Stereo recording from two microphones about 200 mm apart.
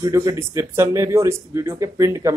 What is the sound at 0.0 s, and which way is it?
Speech, 20° right (ahead or behind).